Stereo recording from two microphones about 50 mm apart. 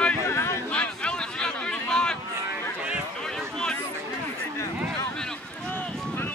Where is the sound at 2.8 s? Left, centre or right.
Right.